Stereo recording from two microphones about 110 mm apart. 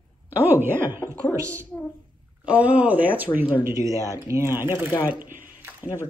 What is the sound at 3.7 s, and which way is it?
A woman's voice, 30° right (ahead or behind).